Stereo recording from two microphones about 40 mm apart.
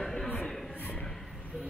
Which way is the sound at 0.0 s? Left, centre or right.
Centre.